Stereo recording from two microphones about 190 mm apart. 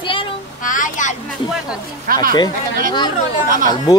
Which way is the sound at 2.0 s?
45° right (ahead or behind).